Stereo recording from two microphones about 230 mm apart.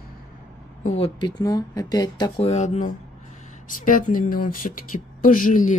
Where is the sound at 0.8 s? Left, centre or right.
Left.